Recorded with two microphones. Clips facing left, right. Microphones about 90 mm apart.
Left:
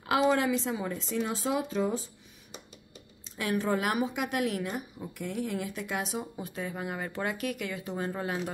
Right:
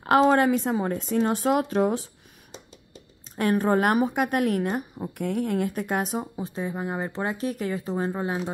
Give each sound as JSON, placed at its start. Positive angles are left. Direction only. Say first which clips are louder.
{"t": 0.2, "sound": "a woman's voice", "louder": "right 6 dB", "side_deg": -50}
{"t": 3.3, "sound": "a woman's voice", "louder": "right 7 dB", "side_deg": -50}
{"t": 6.4, "sound": "speech", "louder": "right 6 dB", "side_deg": -25}